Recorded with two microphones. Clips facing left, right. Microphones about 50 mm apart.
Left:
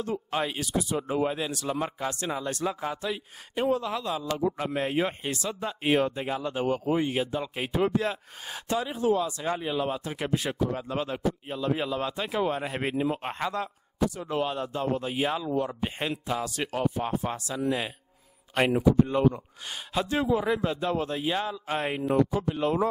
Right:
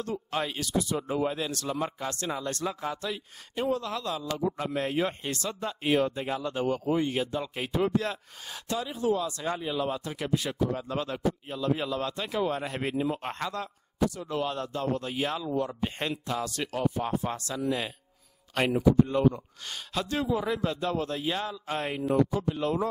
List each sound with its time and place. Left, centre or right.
0.0 s speech: centre
5.9 s speech: centre